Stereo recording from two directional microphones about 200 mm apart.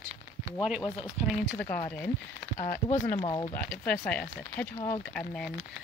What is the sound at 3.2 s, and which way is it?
Speech, 25° left (ahead or behind).